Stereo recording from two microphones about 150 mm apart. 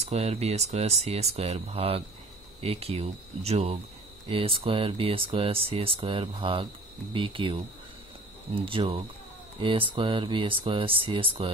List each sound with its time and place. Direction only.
0.0 s speech: 45° right (ahead or behind)